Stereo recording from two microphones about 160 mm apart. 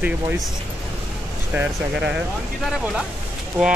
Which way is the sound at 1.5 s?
10° right (ahead or behind).